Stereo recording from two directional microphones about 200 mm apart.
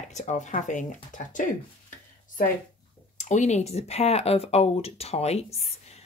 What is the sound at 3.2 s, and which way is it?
Speech, 35° left (ahead or behind).